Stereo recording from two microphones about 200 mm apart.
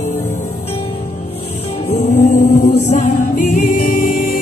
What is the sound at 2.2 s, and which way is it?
Music, 45° left (ahead or behind).